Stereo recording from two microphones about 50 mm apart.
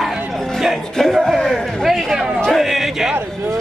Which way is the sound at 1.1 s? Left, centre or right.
Centre.